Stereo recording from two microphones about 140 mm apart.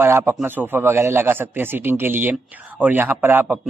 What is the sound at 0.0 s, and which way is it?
Speech, 15° right (ahead or behind).